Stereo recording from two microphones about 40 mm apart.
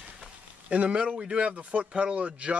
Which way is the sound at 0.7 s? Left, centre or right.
Right.